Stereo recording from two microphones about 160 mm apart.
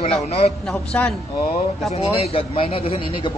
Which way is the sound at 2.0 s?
35° left (ahead or behind).